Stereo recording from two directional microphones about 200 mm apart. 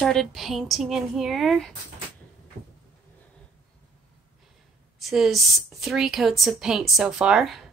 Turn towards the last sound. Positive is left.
turn(degrees=0)  # may be behind; listen again after turning